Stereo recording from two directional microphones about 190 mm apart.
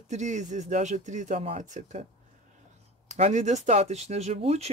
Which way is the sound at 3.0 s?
40° right (ahead or behind).